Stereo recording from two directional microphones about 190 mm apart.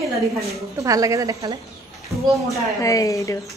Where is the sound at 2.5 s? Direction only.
15° left (ahead or behind).